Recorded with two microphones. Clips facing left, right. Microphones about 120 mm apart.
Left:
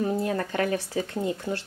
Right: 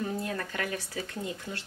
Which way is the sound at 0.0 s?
30° left (ahead or behind).